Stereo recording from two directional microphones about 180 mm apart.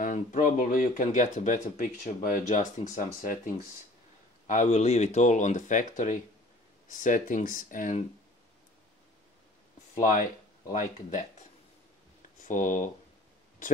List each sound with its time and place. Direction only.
0.0 s speech: 45° left (ahead or behind)
9.9 s speech: 50° left (ahead or behind)
12.2 s a sound: 45° left (ahead or behind)
13.6 s speech: 45° left (ahead or behind)